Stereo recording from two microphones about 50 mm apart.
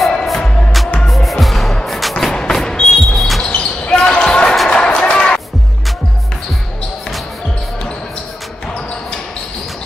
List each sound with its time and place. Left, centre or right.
0.0 s music: centre
2.1 s music: centre
3.2 s a sound: centre
3.5 s basketball bounce: left